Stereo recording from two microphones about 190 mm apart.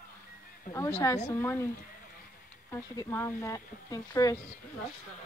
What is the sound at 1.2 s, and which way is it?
Speech, 10° left (ahead or behind).